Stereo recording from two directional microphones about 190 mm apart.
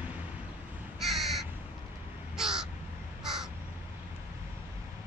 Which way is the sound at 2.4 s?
5° right (ahead or behind).